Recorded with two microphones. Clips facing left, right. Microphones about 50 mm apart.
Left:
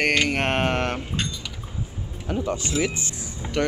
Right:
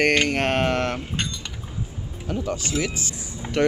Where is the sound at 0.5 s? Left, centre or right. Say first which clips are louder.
Right 1 dB; left.